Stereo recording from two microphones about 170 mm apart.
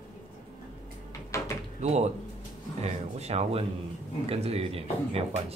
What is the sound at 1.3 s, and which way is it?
Door, 15° left (ahead or behind).